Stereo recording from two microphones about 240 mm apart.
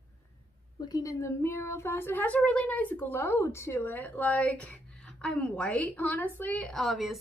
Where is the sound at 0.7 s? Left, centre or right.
Centre.